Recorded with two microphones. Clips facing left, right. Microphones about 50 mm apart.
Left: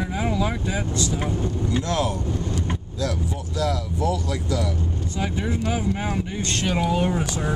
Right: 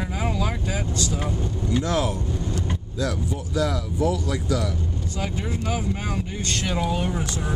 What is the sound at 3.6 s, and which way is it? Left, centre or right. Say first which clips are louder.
Speech: right 1 dB; centre.